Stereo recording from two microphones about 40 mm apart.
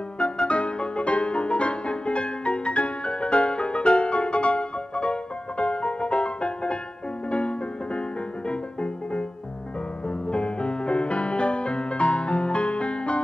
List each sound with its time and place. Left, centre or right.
0.2 s music: left